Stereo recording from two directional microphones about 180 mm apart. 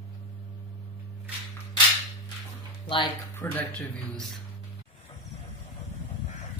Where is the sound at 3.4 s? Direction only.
10° left (ahead or behind).